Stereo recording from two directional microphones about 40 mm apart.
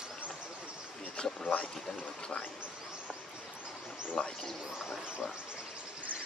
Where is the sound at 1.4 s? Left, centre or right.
Left.